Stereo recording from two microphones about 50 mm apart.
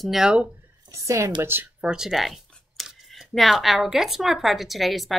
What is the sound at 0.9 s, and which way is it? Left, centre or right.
Speech, right.